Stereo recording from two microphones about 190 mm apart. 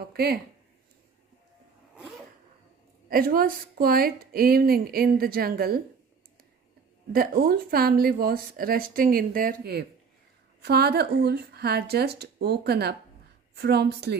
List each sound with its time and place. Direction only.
0.1 s speech: 55° right (ahead or behind)
3.1 s speech: 50° right (ahead or behind)
7.1 s speech: 50° right (ahead or behind)